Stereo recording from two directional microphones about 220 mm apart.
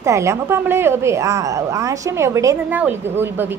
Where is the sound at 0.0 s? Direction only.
15° right (ahead or behind).